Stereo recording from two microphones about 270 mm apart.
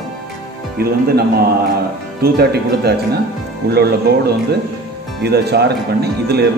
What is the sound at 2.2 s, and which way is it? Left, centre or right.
Speech, right.